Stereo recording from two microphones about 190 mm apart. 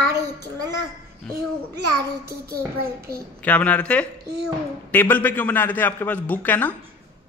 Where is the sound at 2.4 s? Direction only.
55° right (ahead or behind).